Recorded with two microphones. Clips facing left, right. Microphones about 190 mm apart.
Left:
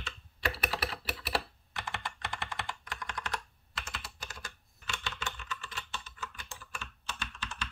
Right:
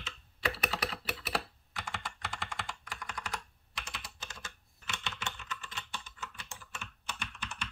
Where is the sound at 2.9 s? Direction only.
10° right (ahead or behind).